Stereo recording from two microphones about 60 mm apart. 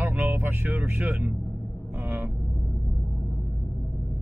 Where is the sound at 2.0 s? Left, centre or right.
Right.